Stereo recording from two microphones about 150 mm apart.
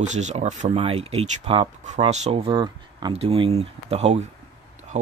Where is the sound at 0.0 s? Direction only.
50° right (ahead or behind).